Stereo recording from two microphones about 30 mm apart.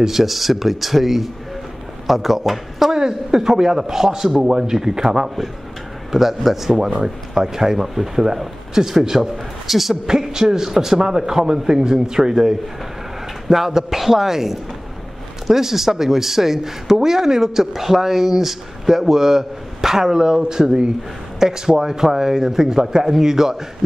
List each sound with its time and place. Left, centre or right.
0.0 s speech: centre
2.9 s a man's voice: right
6.1 s speech: centre
9.7 s speech: centre
10.3 s a man's voice: centre